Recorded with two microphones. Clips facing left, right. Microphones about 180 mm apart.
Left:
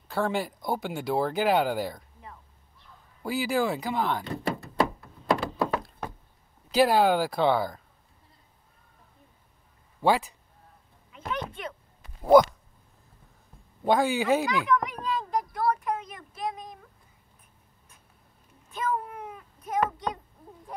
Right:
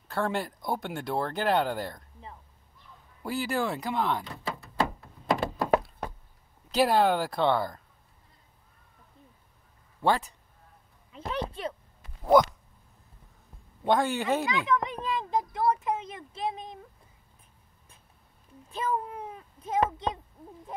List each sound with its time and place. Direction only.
0.1 s speech: centre (ahead or behind)
3.2 s speech: centre (ahead or behind)
4.4 s thunk: 60° left (ahead or behind)
6.7 s speech: 5° left (ahead or behind)
10.0 s speech: 5° left (ahead or behind)
11.1 s a sound: 35° right (ahead or behind)
12.3 s speech: 5° left (ahead or behind)
13.8 s speech: 5° left (ahead or behind)
14.5 s a sound: 20° right (ahead or behind)
18.7 s a sound: 30° right (ahead or behind)